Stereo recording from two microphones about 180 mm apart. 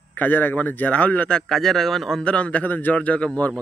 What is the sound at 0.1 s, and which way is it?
Speech, 10° left (ahead or behind).